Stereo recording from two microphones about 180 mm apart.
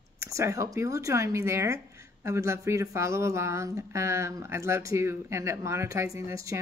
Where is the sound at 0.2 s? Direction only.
15° right (ahead or behind).